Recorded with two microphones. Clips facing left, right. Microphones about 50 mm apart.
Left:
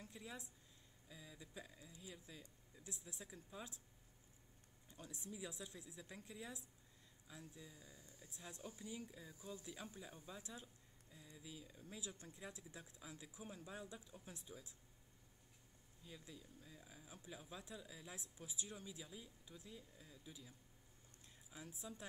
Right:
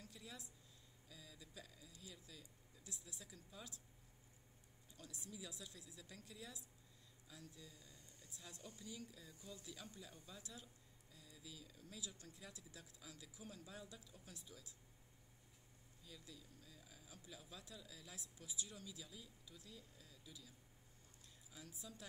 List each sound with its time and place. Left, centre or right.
0.0 s a sound: left
1.0 s speech: left
4.9 s speech: left
16.0 s speech: left